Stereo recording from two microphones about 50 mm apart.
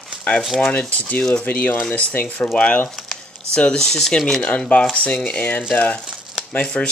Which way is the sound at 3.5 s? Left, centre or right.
Centre.